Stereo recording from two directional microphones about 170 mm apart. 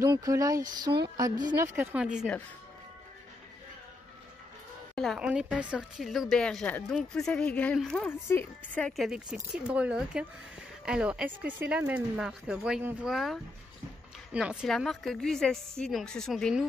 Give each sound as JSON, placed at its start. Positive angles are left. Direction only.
{"t": 0.0, "sound": "a woman's voice", "side_deg": -20}
{"t": 4.9, "sound": "a woman's voice", "side_deg": 0}